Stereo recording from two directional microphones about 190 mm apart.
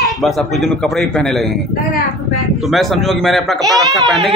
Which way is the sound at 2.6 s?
Centre (ahead or behind).